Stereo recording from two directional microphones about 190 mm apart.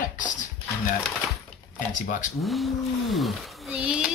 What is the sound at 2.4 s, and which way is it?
Speech, centre (ahead or behind).